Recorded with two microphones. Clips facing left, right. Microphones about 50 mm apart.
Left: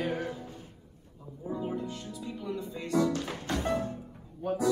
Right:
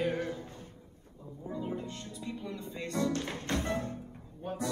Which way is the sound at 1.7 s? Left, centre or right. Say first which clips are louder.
Left 4 dB; right.